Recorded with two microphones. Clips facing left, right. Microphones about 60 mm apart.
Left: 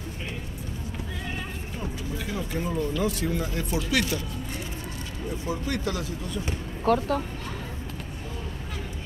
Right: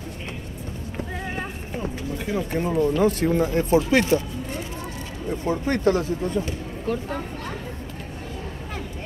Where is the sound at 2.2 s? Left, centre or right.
Right.